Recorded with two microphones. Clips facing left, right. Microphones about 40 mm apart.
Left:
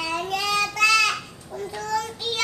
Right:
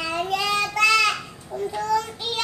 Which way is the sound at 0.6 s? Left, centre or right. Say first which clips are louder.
Right 1 dB; centre.